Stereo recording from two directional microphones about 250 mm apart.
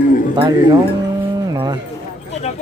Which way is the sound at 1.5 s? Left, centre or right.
Centre.